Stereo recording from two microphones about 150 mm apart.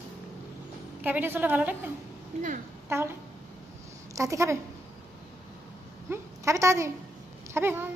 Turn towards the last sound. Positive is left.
turn(degrees=-15)  # may be behind; listen again after turning